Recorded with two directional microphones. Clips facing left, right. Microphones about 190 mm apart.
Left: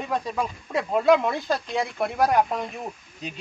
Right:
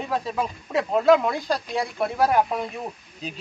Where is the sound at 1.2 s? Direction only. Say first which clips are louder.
Even; 20° left (ahead or behind).